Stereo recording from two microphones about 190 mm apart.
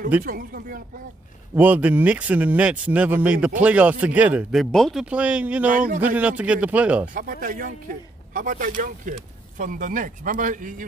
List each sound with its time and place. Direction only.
0.2 s speech: 50° right (ahead or behind)
1.5 s speech: 10° right (ahead or behind)
5.7 s speech: 45° right (ahead or behind)
6.1 s speech: 5° right (ahead or behind)
7.2 s speech: 45° right (ahead or behind)